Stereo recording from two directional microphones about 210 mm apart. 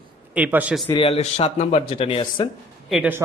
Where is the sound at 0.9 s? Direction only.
25° left (ahead or behind).